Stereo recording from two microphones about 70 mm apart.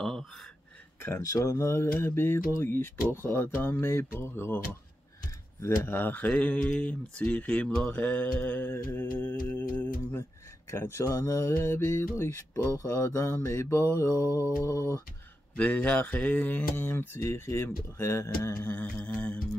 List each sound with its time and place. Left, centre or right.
0.0 s a sound: centre
1.0 s speech: left
5.9 s speech: left
6.2 s speech: centre
8.9 s mantra: left
10.7 s mantra: left
15.5 s speech: centre
18.9 s speech: centre